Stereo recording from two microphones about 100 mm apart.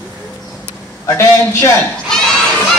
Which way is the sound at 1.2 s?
30° left (ahead or behind).